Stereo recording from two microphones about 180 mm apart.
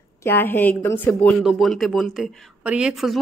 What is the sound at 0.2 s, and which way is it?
A woman's voice, 10° left (ahead or behind).